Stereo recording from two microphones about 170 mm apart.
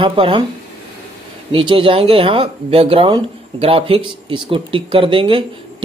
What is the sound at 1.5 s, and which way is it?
Speech, 30° right (ahead or behind).